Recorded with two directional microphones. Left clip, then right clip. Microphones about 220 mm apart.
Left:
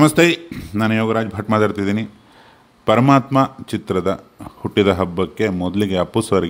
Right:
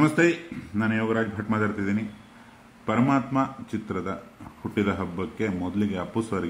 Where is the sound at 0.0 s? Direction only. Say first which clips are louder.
Left 8 dB; 45° left (ahead or behind).